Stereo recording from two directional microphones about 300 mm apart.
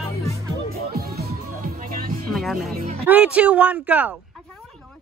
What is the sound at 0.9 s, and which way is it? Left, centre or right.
Music, right.